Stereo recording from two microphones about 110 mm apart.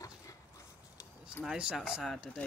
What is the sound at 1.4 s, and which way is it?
Speech, 5° right (ahead or behind).